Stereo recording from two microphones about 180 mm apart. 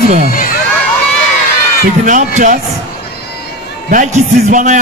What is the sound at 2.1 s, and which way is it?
Speech, 45° right (ahead or behind).